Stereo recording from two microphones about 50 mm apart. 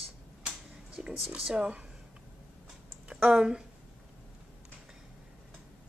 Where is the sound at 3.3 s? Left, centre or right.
Centre.